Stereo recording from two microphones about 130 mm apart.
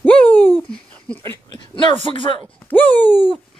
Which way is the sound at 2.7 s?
15° left (ahead or behind).